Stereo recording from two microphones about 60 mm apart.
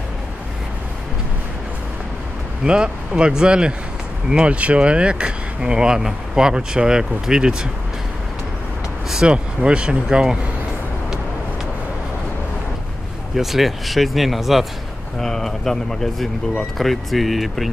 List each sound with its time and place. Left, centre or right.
2.6 s speech: centre
9.1 s speech: centre
13.4 s speech: centre